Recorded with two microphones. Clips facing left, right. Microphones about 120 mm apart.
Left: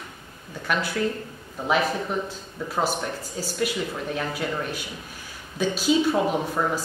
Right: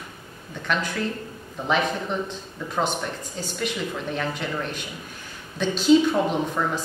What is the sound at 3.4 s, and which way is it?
Speech, 5° left (ahead or behind).